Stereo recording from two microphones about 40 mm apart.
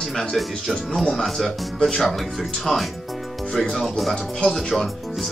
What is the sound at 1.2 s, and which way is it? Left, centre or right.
Speech, centre.